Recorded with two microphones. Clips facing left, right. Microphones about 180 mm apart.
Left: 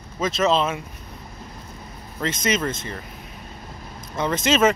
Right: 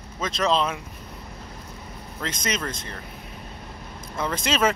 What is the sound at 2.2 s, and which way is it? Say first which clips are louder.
Speech: left 6 dB; 5° left (ahead or behind).